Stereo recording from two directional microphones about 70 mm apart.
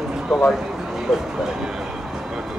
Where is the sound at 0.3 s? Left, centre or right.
Centre.